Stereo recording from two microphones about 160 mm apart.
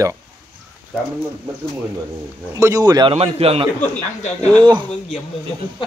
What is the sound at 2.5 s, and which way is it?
A man's voice, 20° right (ahead or behind).